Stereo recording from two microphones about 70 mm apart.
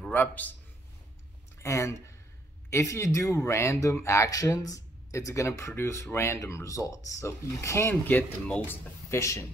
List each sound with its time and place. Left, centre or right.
0.1 s speech: left
1.6 s speech: left
8.1 s speech: left
9.1 s speech: left